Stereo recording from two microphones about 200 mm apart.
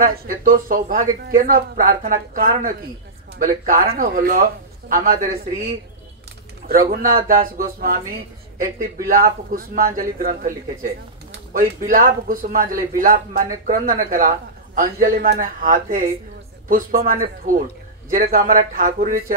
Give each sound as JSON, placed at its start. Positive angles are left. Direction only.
{"t": 0.0, "sound": "speech", "side_deg": -45}
{"t": 6.7, "sound": "speech", "side_deg": -45}